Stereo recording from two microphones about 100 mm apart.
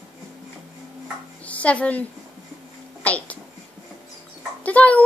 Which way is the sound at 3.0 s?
15° left (ahead or behind).